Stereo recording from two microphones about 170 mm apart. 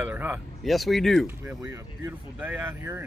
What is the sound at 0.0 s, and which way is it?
Speech, 10° right (ahead or behind).